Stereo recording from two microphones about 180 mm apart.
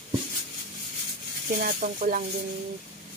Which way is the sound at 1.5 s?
50° right (ahead or behind).